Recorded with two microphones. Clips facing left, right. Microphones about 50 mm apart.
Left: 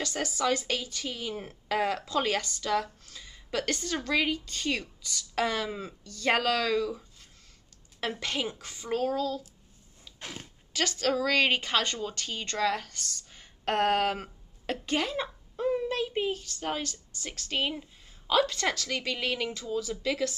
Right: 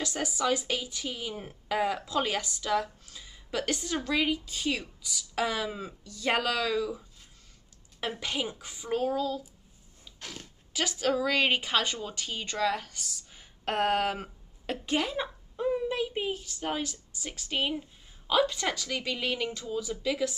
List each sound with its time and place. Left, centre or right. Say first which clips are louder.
0.0 s a woman's voice: even; centre
10.2 s speech: left 2 dB; left
10.7 s a woman's voice: even; centre